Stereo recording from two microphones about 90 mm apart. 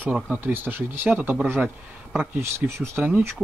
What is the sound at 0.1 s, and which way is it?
Speech, 15° right (ahead or behind).